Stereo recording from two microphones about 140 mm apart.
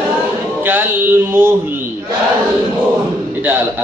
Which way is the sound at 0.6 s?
15° right (ahead or behind).